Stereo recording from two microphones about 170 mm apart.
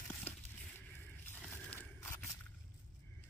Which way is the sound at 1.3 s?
15° left (ahead or behind).